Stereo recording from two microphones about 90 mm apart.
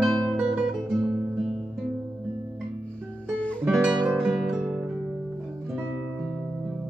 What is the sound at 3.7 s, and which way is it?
Guitar, 5° right (ahead or behind).